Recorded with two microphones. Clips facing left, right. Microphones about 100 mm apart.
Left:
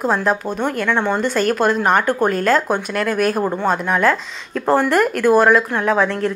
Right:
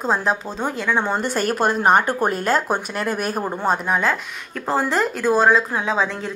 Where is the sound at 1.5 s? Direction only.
35° right (ahead or behind).